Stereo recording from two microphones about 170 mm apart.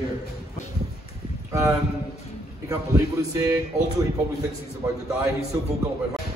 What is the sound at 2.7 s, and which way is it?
Speech, 15° right (ahead or behind).